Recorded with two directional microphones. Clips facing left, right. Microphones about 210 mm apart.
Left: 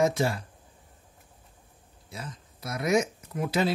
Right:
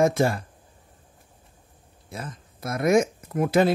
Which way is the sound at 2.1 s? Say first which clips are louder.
Right 4 dB; 50° right (ahead or behind).